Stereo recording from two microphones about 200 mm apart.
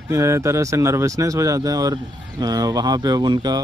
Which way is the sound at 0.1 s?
15° right (ahead or behind).